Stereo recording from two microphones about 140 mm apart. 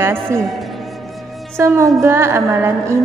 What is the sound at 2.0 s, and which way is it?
A woman's voice, 20° right (ahead or behind).